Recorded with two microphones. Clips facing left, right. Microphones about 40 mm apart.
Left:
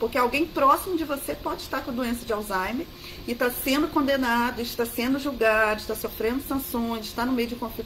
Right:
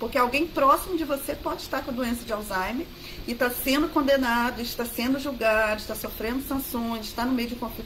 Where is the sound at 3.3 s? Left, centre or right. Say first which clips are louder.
Even; centre.